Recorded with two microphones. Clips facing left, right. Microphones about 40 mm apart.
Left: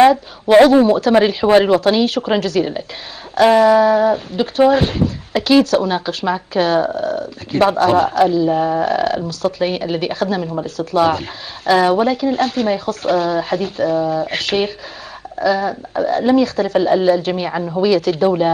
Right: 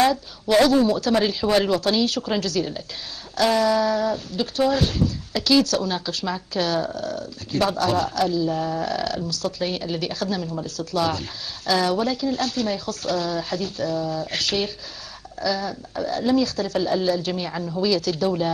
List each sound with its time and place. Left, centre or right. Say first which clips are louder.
0.0 s speech: left 9 dB; left